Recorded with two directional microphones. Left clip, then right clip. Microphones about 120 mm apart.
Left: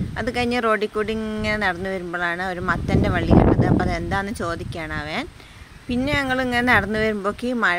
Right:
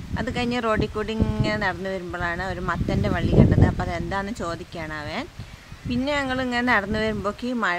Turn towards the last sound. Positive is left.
turn(degrees=25)  # may be behind; listen again after turning